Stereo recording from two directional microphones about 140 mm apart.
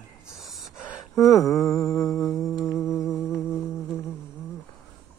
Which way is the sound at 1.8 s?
25° left (ahead or behind).